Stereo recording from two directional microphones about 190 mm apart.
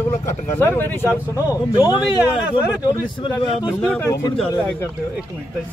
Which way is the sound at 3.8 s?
10° left (ahead or behind).